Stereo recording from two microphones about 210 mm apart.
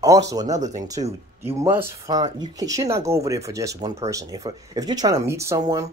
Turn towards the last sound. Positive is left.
turn(degrees=-15)  # may be behind; listen again after turning